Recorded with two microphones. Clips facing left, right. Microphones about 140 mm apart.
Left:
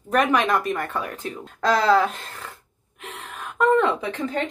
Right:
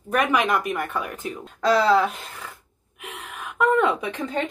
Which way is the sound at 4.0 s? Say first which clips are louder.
Left 1 dB; 20° right (ahead or behind).